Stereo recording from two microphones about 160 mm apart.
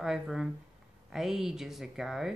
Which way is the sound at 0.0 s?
5° right (ahead or behind).